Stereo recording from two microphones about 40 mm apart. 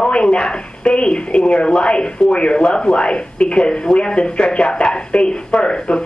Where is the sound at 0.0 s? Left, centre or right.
Left.